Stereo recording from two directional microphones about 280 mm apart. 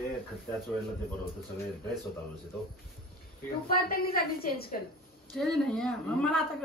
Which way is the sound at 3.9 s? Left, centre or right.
Left.